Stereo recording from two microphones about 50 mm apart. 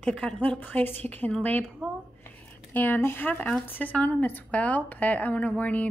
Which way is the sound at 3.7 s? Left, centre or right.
Left.